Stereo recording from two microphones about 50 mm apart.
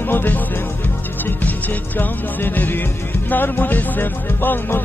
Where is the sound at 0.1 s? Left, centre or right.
Left.